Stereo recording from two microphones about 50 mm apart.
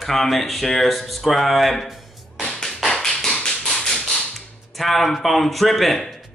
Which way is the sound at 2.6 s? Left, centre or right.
Centre.